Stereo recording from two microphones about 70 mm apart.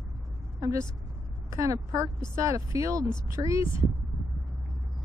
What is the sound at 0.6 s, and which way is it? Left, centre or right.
A woman's voice, right.